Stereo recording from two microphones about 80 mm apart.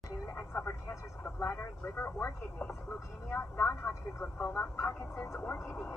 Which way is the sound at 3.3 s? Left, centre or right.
Left.